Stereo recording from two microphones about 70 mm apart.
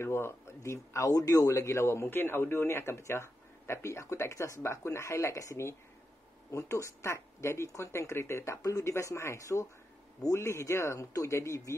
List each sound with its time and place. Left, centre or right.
0.0 s speech: left
8.6 s speech: left
8.9 s speech: left